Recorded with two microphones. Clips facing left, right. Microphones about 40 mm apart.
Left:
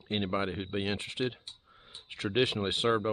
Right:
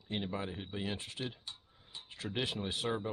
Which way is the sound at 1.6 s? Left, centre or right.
Left.